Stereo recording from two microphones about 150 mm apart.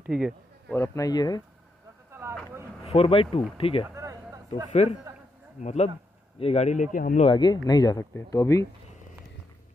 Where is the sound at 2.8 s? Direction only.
40° left (ahead or behind).